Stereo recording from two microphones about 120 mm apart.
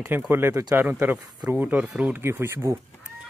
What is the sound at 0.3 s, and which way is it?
Speech, 20° right (ahead or behind).